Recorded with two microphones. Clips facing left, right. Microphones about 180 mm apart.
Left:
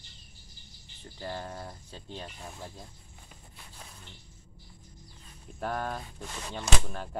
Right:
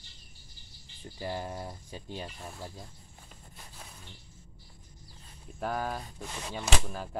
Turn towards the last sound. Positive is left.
turn(degrees=-5)  # may be behind; listen again after turning